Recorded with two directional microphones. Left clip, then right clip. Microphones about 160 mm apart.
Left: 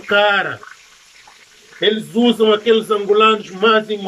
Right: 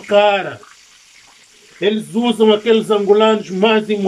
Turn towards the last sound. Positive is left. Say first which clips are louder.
# even
turn(degrees=-20)  # may be behind; listen again after turning